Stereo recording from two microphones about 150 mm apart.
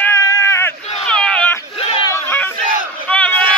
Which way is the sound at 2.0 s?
15° left (ahead or behind).